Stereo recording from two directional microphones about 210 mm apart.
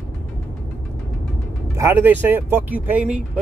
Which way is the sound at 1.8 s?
10° right (ahead or behind).